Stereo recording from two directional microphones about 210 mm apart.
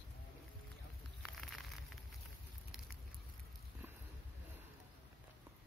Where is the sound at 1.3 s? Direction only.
Centre (ahead or behind).